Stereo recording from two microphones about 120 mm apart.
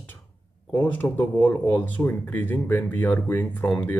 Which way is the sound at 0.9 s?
15° left (ahead or behind).